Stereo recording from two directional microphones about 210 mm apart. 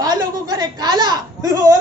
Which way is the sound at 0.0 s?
20° right (ahead or behind).